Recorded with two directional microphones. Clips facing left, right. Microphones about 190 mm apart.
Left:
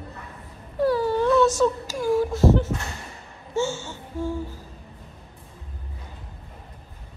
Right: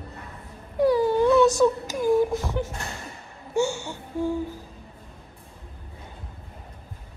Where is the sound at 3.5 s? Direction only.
15° right (ahead or behind).